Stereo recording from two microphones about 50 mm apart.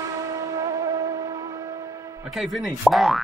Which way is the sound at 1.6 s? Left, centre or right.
Right.